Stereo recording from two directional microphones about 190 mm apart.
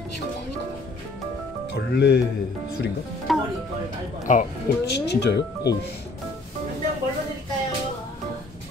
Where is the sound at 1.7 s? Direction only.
60° left (ahead or behind).